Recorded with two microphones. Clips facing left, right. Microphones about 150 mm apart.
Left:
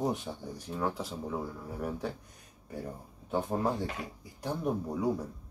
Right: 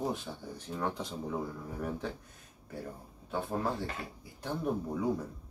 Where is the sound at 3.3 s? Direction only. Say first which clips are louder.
Left 3 dB; 15° left (ahead or behind).